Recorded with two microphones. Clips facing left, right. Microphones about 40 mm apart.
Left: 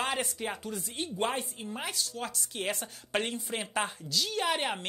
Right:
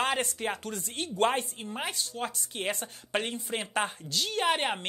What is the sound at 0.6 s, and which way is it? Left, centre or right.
Speech, right.